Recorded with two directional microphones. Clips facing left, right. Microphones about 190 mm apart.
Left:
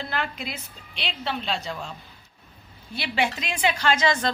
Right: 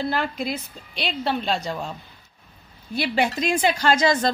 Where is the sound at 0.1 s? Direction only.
40° right (ahead or behind).